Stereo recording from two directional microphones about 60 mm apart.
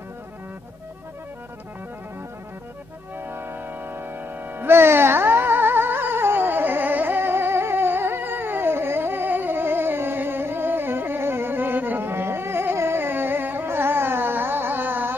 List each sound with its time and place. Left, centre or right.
3.3 s music: right